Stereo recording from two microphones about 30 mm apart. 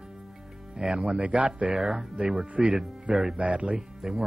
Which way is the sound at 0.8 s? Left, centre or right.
Right.